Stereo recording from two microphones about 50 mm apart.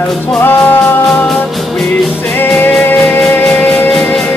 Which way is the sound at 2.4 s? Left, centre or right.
Left.